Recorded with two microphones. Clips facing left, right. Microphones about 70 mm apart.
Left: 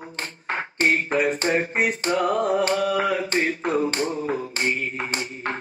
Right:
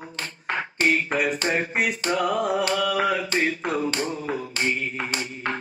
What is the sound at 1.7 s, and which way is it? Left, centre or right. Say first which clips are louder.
Music: left 2 dB; left.